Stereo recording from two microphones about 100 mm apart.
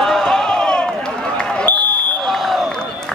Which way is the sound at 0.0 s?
5° left (ahead or behind).